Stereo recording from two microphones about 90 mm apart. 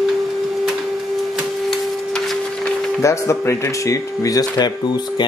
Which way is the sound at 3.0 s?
35° left (ahead or behind).